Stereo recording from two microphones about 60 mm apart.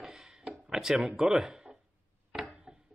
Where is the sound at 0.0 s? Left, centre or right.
Centre.